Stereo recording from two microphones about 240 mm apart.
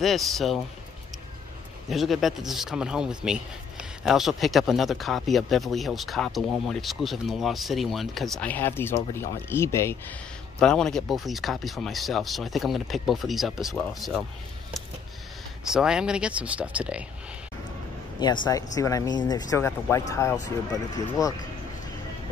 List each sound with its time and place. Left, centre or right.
0.0 s speech: centre
1.9 s speech: centre
15.7 s speech: centre
18.2 s speech: centre